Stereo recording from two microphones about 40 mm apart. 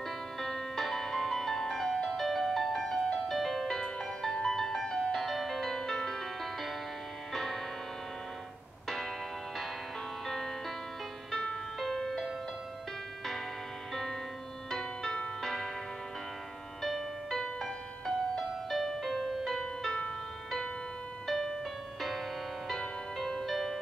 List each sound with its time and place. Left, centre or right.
0.4 s music: centre
8.8 s church bell: centre
10.2 s music: centre
14.7 s music: centre
16.8 s music: centre
19.6 s music: centre
21.3 s music: centre
22.7 s music: centre
23.5 s music: centre